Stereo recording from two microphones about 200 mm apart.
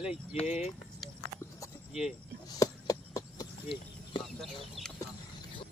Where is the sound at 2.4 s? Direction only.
15° left (ahead or behind).